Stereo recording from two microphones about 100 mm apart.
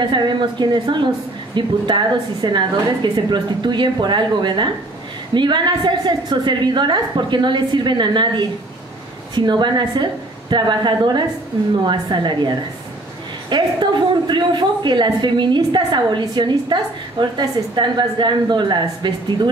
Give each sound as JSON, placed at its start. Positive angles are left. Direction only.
{"t": 0.0, "sound": "a man's voice", "side_deg": -50}